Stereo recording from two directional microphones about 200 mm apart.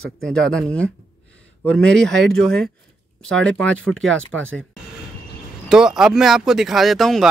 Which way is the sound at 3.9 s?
85° right.